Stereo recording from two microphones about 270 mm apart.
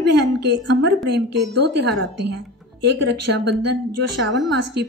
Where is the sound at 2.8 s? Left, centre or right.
Right.